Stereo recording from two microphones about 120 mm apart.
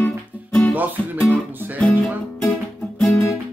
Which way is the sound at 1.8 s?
10° left (ahead or behind).